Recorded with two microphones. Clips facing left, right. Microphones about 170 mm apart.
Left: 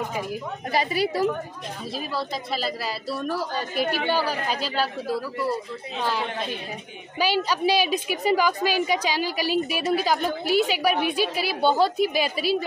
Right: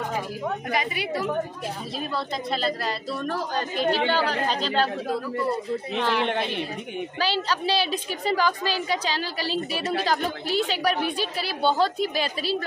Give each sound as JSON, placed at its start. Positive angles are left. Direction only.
{"t": 0.7, "sound": "a woman's voice", "side_deg": 35}
{"t": 2.0, "sound": "a woman's voice", "side_deg": 5}
{"t": 5.9, "sound": "a woman's voice", "side_deg": 10}